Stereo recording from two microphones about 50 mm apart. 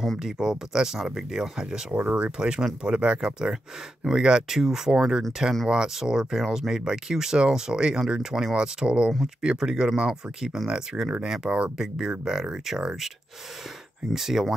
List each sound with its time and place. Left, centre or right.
0.2 s speech: centre
2.0 s speech: right
2.3 s speech: centre
14.1 s speech: centre